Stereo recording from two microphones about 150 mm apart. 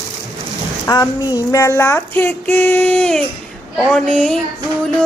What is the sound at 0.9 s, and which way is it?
A man's voice, 25° left (ahead or behind).